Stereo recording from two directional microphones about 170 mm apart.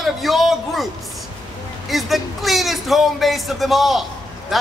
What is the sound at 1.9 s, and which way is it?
A man's voice, centre (ahead or behind).